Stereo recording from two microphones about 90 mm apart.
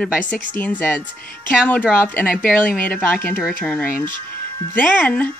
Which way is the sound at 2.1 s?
20° left (ahead or behind).